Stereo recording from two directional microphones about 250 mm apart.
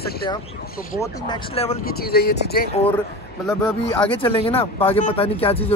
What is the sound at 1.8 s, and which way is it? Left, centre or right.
Speech, left.